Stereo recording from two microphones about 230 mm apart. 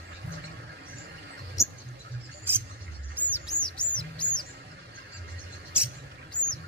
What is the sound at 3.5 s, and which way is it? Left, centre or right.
Bird, centre.